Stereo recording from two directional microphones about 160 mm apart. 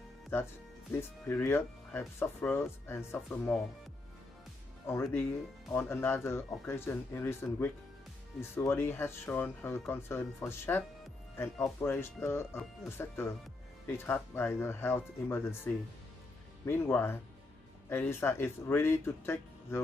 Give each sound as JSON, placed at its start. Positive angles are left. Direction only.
{"t": 0.9, "sound": "speech", "side_deg": 10}
{"t": 4.8, "sound": "speech", "side_deg": 15}